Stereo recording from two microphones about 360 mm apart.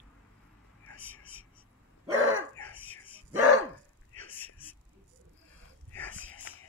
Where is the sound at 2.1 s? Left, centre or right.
Right.